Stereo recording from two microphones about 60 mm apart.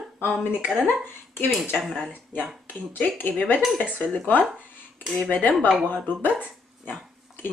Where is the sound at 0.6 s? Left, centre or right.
Centre.